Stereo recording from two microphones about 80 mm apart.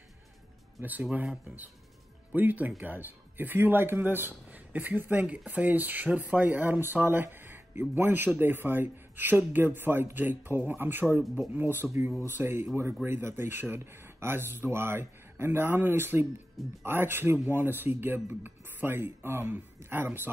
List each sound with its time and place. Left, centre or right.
2.3 s a man's voice: right